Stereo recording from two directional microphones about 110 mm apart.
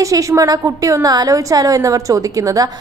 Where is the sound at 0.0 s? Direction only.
30° right (ahead or behind).